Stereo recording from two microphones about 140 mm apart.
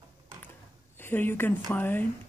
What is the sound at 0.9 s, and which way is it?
Speech, 15° left (ahead or behind).